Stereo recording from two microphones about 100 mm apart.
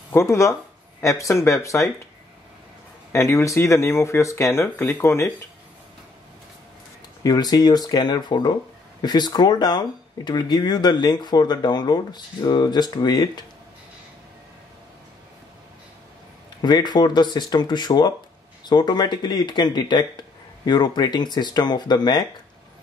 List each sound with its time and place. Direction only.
0.1 s speech: 30° left (ahead or behind)
3.1 s speech: 25° left (ahead or behind)
7.2 s speech: 40° left (ahead or behind)
16.6 s speech: 45° left (ahead or behind)